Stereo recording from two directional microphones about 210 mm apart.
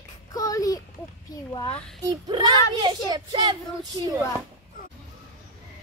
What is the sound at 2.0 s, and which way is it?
Child singing, 20° right (ahead or behind).